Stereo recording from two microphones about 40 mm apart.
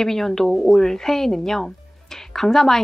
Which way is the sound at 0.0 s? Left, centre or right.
Centre.